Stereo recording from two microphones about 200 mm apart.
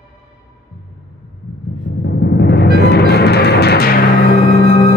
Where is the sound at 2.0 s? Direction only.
55° left (ahead or behind).